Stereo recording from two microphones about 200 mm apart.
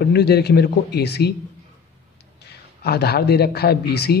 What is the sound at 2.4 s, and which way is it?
Speech, 55° left (ahead or behind).